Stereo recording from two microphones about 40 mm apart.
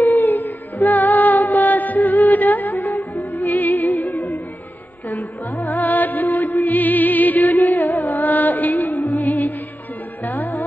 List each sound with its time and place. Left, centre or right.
0.3 s music: left
7.5 s music: left